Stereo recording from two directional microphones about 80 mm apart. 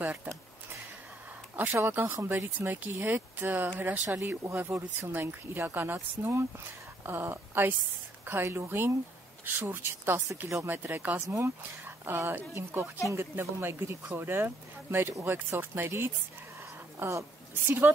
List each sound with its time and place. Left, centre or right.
1.8 s speech: right
11.2 s speech: right
12.0 s speech: right
17.6 s speech: right